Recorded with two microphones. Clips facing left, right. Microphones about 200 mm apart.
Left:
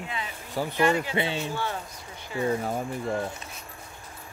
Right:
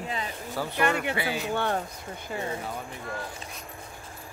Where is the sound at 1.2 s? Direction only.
25° left (ahead or behind).